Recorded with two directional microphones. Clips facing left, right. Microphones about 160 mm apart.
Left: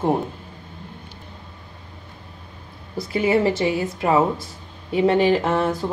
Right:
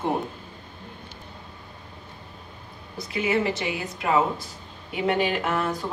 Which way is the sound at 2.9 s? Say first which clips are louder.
Left 6 dB; 30° left (ahead or behind).